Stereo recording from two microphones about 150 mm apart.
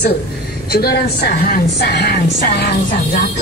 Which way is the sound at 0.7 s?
90° left.